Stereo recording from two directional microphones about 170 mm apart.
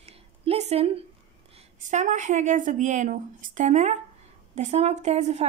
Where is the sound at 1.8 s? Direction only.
45° right (ahead or behind).